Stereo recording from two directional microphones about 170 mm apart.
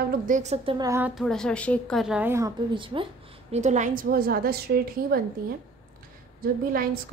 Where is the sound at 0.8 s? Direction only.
15° right (ahead or behind).